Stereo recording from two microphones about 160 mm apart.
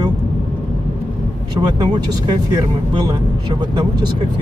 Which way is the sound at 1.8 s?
25° right (ahead or behind).